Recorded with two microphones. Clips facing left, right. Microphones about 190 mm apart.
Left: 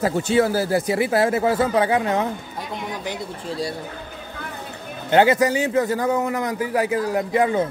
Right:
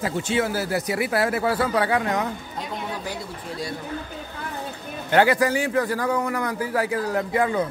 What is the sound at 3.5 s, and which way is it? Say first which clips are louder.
Speech: left 4 dB; 30° left (ahead or behind).